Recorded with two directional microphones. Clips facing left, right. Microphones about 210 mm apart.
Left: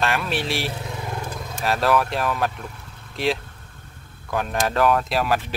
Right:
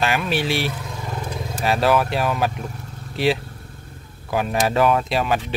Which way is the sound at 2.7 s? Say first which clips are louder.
Right 7 dB; 40° right (ahead or behind).